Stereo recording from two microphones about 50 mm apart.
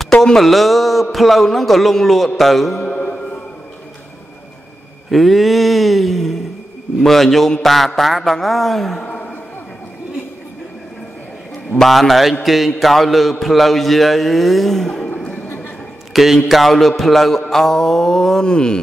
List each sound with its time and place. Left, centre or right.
0.1 s a man's voice: centre
2.9 s mantra: left
5.1 s a man's voice: centre
11.7 s a man's voice: centre
16.1 s a man's voice: centre
17.5 s mantra: centre